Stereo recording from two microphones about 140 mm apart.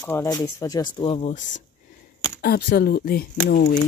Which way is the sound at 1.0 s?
40° left (ahead or behind).